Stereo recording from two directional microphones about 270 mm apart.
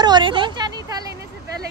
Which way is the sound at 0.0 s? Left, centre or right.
Centre.